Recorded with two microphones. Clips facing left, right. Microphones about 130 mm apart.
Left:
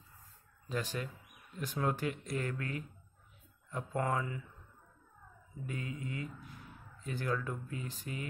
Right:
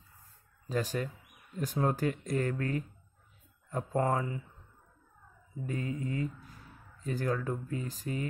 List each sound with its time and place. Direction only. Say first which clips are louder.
0.7 s speech: right 5 dB; 40° right (ahead or behind)
5.7 s speech: right 6 dB; 40° right (ahead or behind)